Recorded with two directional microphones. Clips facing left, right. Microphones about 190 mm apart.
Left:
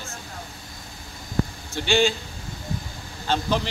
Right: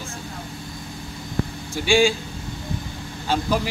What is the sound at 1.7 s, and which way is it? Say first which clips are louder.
Speech: right 3 dB; 10° right (ahead or behind).